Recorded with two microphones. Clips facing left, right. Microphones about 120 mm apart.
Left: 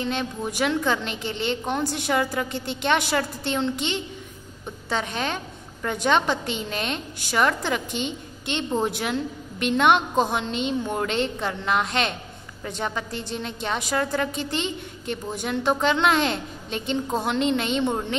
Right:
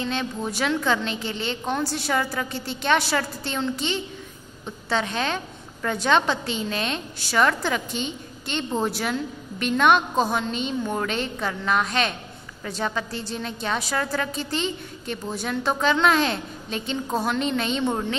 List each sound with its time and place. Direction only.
0.0 s a woman's voice: 15° left (ahead or behind)